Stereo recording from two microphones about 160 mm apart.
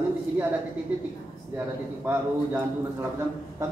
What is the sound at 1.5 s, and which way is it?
A man's voice, 10° right (ahead or behind).